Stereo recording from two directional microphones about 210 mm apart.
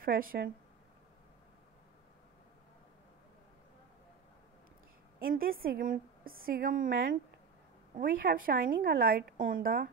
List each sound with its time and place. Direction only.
0.0 s a woman's voice: 45° right (ahead or behind)
5.2 s a woman's voice: 45° right (ahead or behind)